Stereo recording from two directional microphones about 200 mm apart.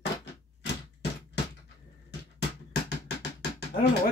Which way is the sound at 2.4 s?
55° left (ahead or behind).